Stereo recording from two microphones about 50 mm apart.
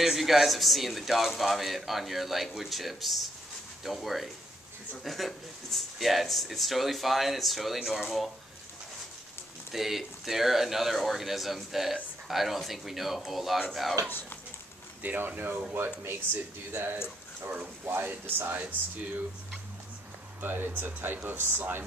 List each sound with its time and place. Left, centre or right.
0.0 s speech: centre
9.7 s speech: centre
15.0 s speech: right
17.8 s speech: right
20.3 s speech: right